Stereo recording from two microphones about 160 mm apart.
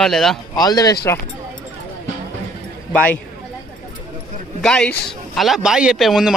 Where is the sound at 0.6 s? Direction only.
25° left (ahead or behind).